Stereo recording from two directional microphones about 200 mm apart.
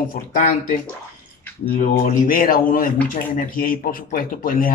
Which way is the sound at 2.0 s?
45° left (ahead or behind).